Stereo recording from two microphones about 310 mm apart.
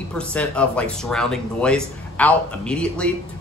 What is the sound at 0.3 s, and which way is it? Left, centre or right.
Speech, centre.